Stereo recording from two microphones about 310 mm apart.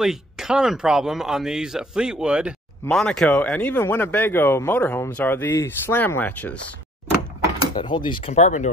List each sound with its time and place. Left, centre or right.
0.0 s speech: centre
7.7 s speech: centre